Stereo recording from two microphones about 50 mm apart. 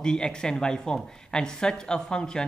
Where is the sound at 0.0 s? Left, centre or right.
Centre.